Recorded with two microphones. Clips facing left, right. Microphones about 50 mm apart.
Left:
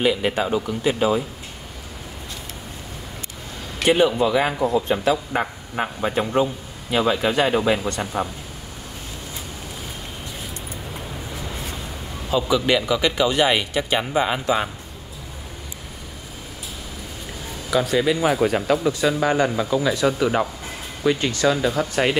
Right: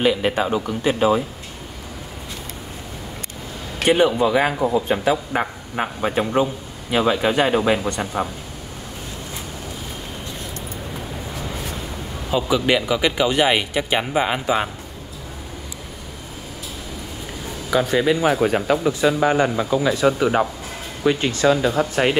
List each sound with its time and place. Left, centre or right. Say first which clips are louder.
0.0 s a man's voice: right 2 dB; right
3.9 s speech: right 1 dB; centre
12.3 s speech: right 1 dB; centre
17.6 s speech: right 1 dB; centre; by 21.8 s right
21.9 s speech: right 1 dB; centre